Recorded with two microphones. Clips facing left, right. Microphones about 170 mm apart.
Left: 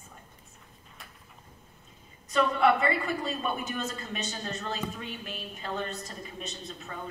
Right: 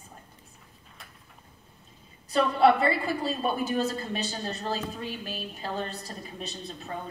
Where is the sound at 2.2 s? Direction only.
35° right (ahead or behind).